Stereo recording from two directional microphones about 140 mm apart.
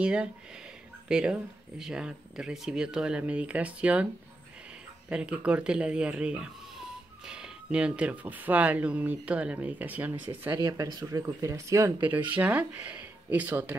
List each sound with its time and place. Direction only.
0.0 s speech: 10° right (ahead or behind)
5.1 s speech: 10° right (ahead or behind)
10.5 s speech: 30° right (ahead or behind)
12.3 s speech: 10° right (ahead or behind)